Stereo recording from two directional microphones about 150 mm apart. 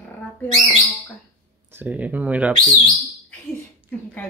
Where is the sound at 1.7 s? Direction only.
10° right (ahead or behind).